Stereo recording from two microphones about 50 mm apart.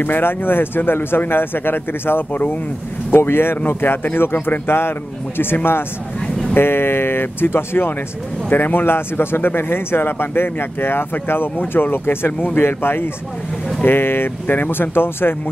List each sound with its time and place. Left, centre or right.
0.0 s speech: left
3.1 s speech: left